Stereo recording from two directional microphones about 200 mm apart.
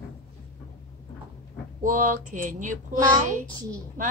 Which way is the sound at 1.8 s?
40° right (ahead or behind).